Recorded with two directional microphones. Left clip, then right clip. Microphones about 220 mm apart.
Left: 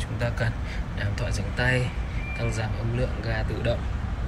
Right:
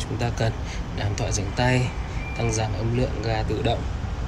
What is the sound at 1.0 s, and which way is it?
Speech, 25° left (ahead or behind).